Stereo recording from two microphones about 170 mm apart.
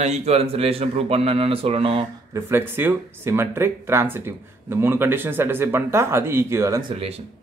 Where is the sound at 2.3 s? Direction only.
15° right (ahead or behind).